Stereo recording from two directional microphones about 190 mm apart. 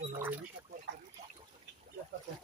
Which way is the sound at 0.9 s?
70° right (ahead or behind).